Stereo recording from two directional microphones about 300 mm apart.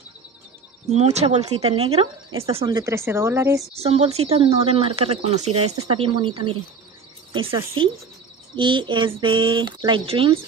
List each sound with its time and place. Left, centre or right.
0.8 s speech: right
3.7 s speech: right